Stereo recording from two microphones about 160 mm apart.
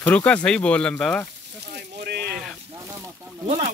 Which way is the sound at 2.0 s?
85° right.